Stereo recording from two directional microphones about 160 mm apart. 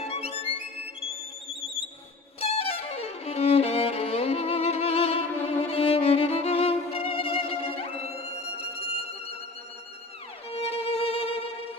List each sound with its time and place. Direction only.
2.4 s violin: 40° left (ahead or behind)
10.5 s music: 40° left (ahead or behind)